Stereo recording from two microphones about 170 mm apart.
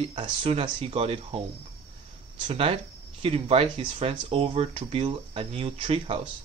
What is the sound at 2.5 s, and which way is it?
Speech, 35° right (ahead or behind).